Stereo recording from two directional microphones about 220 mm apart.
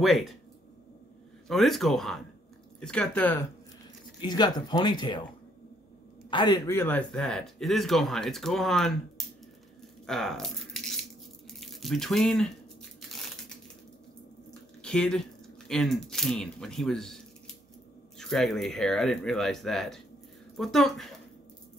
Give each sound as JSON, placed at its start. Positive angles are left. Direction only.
{"t": 0.0, "sound": "speech", "side_deg": 0}
{"t": 1.5, "sound": "speech", "side_deg": 0}
{"t": 4.2, "sound": "speech", "side_deg": 20}
{"t": 6.3, "sound": "speech", "side_deg": 20}
{"t": 10.0, "sound": "speech", "side_deg": 0}
{"t": 14.8, "sound": "speech", "side_deg": 5}